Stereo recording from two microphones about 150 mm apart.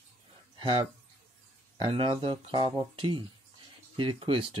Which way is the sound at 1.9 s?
35° right (ahead or behind).